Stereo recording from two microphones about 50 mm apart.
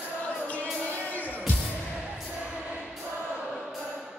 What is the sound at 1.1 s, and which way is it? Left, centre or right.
Music, left.